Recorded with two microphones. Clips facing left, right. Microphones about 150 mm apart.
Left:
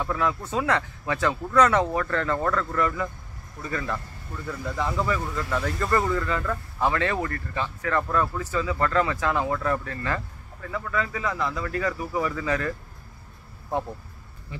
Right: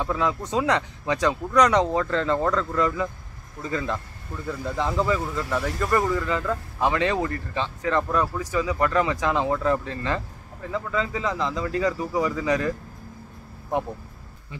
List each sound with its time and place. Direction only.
0.0 s speech: 20° right (ahead or behind)